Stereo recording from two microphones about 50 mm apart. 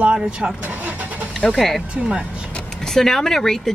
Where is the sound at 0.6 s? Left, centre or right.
Right.